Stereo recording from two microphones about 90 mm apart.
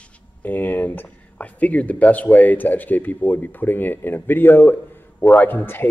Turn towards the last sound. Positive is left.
turn(degrees=20)  # may be behind; listen again after turning